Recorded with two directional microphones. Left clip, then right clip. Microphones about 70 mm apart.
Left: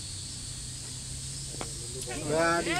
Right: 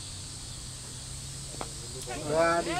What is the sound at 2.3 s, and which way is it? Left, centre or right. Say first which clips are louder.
Speech: right 1 dB; left.